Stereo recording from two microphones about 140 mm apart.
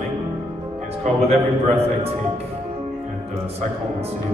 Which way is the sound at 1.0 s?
50° right (ahead or behind).